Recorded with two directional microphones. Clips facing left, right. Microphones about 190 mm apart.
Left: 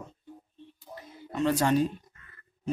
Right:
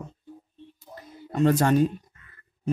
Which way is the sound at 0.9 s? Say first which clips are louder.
Right 3 dB; 45° right (ahead or behind).